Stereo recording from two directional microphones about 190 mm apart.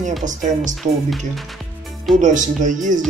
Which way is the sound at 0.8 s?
Centre (ahead or behind).